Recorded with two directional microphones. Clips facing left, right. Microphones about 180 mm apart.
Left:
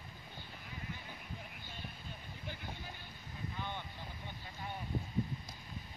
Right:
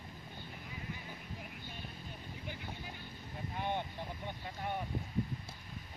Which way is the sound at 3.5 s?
60° right (ahead or behind).